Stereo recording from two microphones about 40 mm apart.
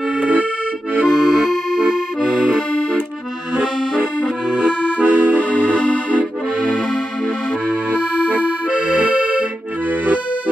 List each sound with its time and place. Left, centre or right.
0.2 s accordion: right
1.0 s accordion: centre; by 5.4 s right
8.2 s accordion: right